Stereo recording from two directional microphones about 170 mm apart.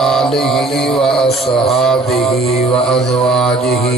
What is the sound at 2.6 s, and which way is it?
Mantra, 35° left (ahead or behind).